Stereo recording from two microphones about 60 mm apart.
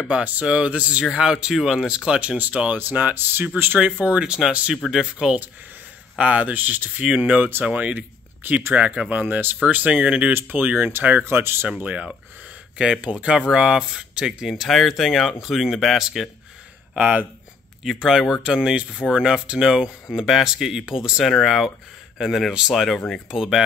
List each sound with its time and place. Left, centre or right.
0.1 s speech: right
3.8 s speech: right
11.7 s speech: centre
14.5 s speech: centre
16.9 s speech: right
17.8 s speech: centre
21.2 s speech: centre
23.3 s speech: centre